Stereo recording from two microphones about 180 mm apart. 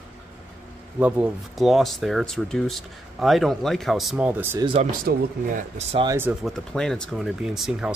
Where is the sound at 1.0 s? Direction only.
10° right (ahead or behind).